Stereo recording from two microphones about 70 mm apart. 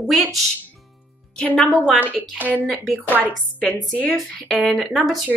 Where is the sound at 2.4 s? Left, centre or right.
Right.